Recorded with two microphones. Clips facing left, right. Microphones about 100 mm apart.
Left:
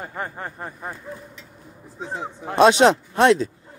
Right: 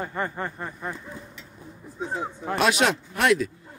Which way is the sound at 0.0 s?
5° left (ahead or behind).